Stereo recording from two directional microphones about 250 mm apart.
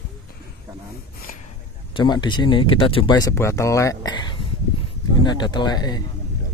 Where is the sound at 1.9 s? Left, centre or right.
Centre.